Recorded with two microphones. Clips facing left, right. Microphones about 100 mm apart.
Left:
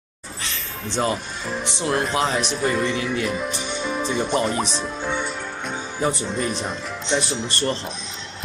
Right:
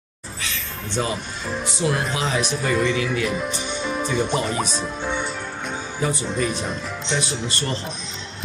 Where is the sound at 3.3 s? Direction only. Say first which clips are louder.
Even; centre (ahead or behind).